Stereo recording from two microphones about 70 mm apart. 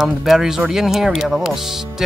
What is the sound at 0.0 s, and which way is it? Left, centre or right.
Speech, centre.